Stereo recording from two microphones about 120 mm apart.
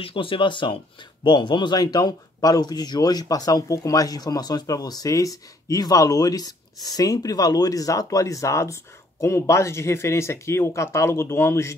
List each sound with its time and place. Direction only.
0.0 s speech: 45° left (ahead or behind); by 11.7 s 20° left (ahead or behind)